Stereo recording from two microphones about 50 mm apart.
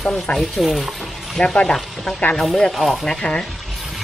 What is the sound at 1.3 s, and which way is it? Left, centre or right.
Speech, centre.